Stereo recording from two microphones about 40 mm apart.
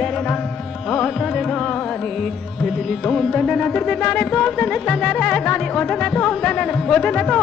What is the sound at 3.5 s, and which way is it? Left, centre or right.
Speech, left.